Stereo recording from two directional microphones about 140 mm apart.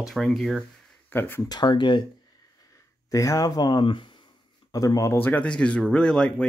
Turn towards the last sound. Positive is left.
turn(degrees=5)  # may be behind; listen again after turning